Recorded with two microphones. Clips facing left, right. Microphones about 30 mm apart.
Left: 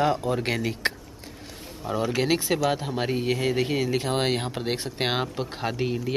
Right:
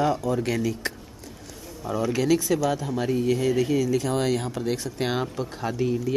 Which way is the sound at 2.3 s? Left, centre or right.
Left.